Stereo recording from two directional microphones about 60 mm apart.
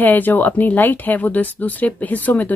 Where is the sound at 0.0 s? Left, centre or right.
Left.